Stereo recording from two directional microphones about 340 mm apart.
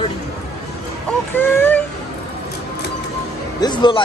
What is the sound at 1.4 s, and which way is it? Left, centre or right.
Speech, centre.